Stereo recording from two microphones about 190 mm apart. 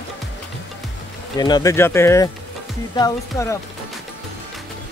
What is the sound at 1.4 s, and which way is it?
Speech, 20° left (ahead or behind).